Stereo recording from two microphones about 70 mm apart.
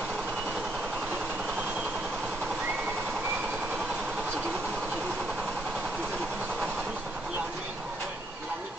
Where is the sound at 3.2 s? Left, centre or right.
Centre.